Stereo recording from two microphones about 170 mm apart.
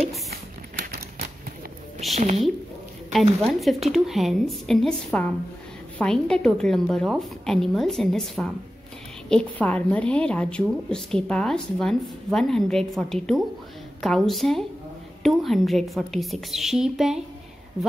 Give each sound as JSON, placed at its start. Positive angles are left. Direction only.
{"t": 2.1, "sound": "speech", "side_deg": -40}
{"t": 3.1, "sound": "a woman's voice", "side_deg": 0}